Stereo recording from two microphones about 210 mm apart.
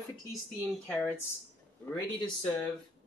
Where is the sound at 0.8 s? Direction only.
5° left (ahead or behind).